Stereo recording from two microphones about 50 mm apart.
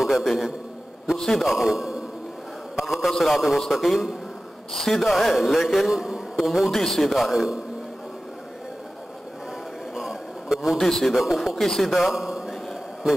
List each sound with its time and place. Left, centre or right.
0.0 s a man's voice: centre
9.9 s a sound: centre
10.8 s a man's voice: centre